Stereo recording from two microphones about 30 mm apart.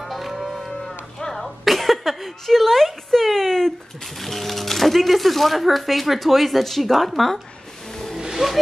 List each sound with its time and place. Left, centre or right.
0.0 s music: centre
0.7 s cattle: centre
1.3 s a sound: centre
4.2 s speech: centre
8.4 s speech: right